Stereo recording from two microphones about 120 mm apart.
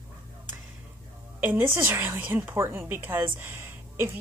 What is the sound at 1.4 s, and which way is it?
A woman's voice, 15° right (ahead or behind).